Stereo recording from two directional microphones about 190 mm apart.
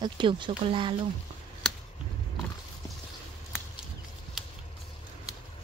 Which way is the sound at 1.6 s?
5° left (ahead or behind).